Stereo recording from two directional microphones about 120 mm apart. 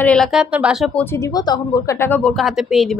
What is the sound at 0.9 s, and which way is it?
Speech, 20° left (ahead or behind).